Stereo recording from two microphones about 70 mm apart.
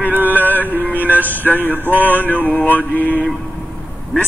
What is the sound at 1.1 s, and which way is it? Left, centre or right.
Male singing, left.